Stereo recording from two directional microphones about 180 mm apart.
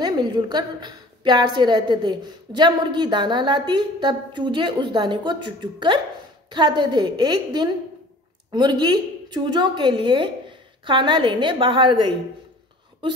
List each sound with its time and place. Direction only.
0.0 s a woman's voice: 25° right (ahead or behind)